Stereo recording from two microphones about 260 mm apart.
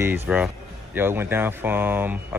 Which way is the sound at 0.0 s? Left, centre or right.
Centre.